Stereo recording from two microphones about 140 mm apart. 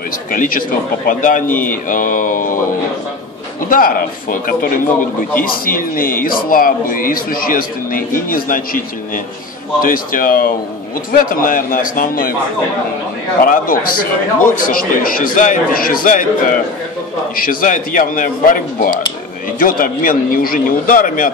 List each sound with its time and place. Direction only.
0.3 s speech: 75° left (ahead or behind)
3.6 s a man's voice: 90° left
9.8 s a man's voice: 90° left
13.4 s a man's voice: 85° left